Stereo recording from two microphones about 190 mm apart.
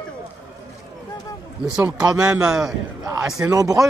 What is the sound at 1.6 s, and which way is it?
Speech, 20° left (ahead or behind).